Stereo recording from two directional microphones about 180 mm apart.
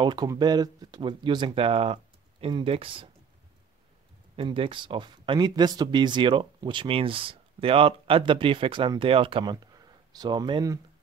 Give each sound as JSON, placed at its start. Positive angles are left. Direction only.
{"t": 0.0, "sound": "speech", "side_deg": -25}
{"t": 4.4, "sound": "speech", "side_deg": -30}